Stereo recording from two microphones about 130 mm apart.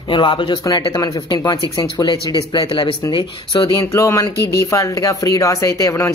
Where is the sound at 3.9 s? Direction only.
25° left (ahead or behind).